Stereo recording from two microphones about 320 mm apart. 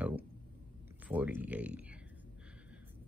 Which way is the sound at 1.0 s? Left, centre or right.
Centre.